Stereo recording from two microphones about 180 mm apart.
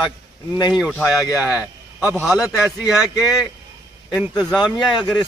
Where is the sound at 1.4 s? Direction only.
5° right (ahead or behind).